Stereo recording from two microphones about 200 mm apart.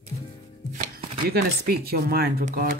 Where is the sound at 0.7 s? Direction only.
50° right (ahead or behind).